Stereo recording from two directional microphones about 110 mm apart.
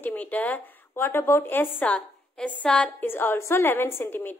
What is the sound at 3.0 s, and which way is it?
Speech, 20° left (ahead or behind).